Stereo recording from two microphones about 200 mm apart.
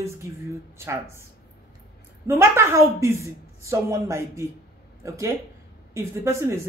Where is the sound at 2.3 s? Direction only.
10° right (ahead or behind).